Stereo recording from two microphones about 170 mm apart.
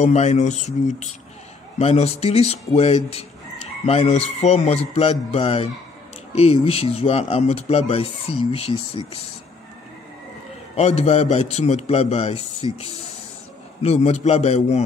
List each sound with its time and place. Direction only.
0.0 s speech: 40° left (ahead or behind)
10.8 s speech: 40° left (ahead or behind)
13.8 s speech: 40° left (ahead or behind)